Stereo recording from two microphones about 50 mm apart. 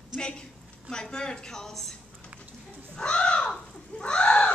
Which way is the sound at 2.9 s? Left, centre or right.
Centre.